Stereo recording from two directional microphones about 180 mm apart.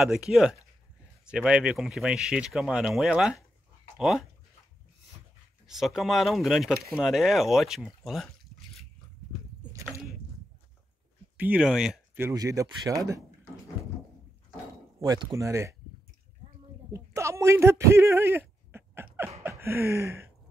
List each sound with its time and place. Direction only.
0.0 s speech: centre (ahead or behind)
5.7 s speech: centre (ahead or behind)
11.3 s speech: 10° right (ahead or behind)
15.0 s speech: 20° right (ahead or behind)
16.9 s speech: 15° right (ahead or behind)
19.4 s a sound: 15° right (ahead or behind)